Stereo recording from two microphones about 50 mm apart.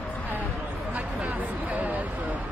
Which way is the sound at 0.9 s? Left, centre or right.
Right.